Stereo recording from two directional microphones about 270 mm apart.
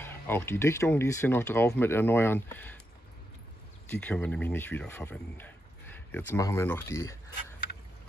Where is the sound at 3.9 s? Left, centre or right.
Centre.